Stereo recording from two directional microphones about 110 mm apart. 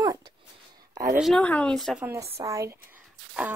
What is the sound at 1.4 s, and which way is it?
Speech, 10° left (ahead or behind).